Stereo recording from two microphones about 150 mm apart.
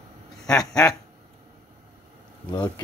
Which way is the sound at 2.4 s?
25° left (ahead or behind).